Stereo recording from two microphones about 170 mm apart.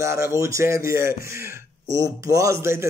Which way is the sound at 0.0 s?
15° right (ahead or behind).